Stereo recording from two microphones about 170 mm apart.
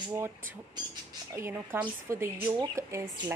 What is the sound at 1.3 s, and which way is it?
Speech, 15° right (ahead or behind).